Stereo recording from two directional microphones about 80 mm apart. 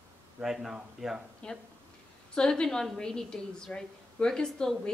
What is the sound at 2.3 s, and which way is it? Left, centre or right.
A woman's voice, centre.